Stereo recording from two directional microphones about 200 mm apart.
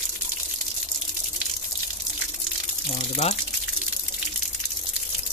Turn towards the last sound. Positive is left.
turn(degrees=30)  # may be behind; listen again after turning